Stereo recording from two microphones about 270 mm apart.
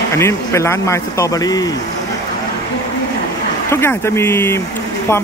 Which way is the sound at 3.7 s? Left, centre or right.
Centre.